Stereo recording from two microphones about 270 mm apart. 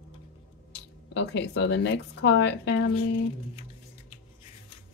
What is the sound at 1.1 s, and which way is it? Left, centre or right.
Speech, left.